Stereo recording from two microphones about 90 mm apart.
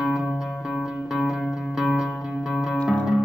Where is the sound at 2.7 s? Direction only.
15° left (ahead or behind).